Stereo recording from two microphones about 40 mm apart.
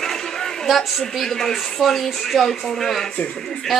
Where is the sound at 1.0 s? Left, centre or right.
Centre.